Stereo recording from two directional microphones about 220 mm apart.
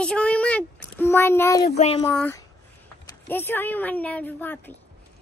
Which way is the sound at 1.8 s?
25° left (ahead or behind).